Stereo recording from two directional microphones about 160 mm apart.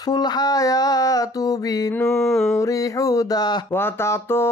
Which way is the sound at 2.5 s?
20° left (ahead or behind).